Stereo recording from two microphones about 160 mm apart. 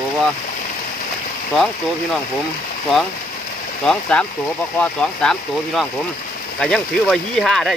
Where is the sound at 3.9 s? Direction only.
5° left (ahead or behind).